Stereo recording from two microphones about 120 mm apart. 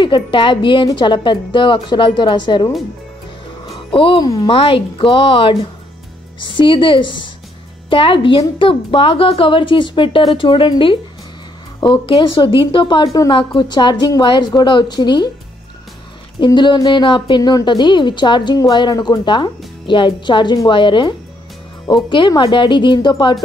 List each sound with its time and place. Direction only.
0.0 s a woman's voice: 40° left (ahead or behind)
3.9 s a woman's voice: 45° left (ahead or behind)
16.3 s a woman's voice: 40° left (ahead or behind)